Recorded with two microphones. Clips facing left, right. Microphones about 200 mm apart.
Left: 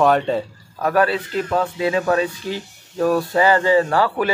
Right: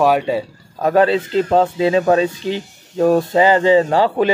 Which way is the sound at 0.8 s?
20° right (ahead or behind).